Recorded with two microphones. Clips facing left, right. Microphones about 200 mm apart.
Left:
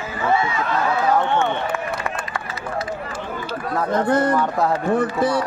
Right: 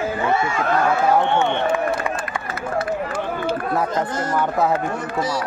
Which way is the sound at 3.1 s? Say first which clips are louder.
Right 5 dB; 55° right (ahead or behind).